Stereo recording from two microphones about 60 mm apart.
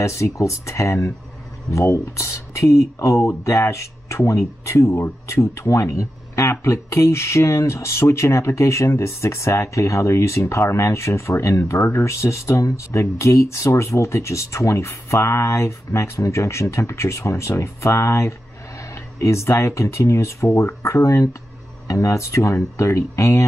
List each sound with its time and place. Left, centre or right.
0.0 s speech: left